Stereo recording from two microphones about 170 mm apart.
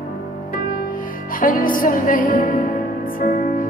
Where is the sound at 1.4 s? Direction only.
55° left (ahead or behind).